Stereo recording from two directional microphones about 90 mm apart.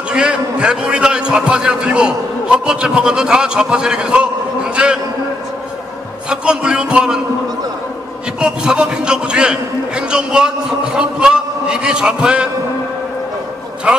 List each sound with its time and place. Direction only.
0.1 s a man's voice: 10° right (ahead or behind)
6.2 s a sound: 10° right (ahead or behind)
8.4 s a man's voice: 10° right (ahead or behind)